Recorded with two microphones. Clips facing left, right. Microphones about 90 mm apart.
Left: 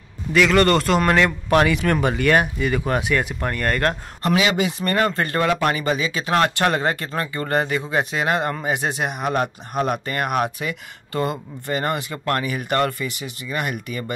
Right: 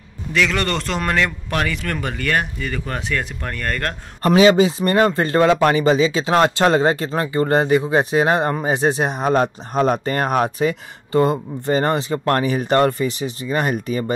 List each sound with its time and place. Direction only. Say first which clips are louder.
0.3 s speech: left 4 dB; 5° left (ahead or behind)
4.3 s speech: right 7 dB; 30° right (ahead or behind)